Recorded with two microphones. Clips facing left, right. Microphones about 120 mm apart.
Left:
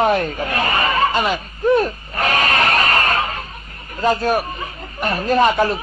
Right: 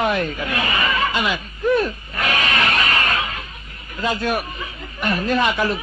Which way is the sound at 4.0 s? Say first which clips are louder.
Left 5 dB; 40° left (ahead or behind).